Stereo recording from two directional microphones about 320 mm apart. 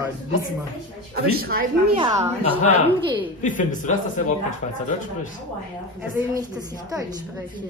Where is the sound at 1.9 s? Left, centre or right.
Centre.